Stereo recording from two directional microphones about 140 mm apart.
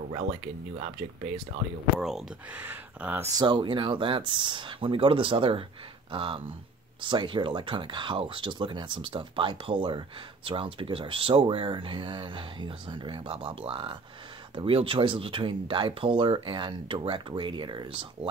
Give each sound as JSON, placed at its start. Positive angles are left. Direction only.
{"t": 0.1, "sound": "speech", "side_deg": -45}
{"t": 2.0, "sound": "speech", "side_deg": 0}
{"t": 2.6, "sound": "speech", "side_deg": -15}
{"t": 3.3, "sound": "speech", "side_deg": -35}